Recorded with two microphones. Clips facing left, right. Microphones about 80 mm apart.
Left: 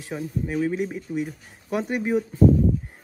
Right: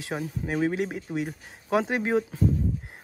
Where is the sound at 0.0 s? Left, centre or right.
Right.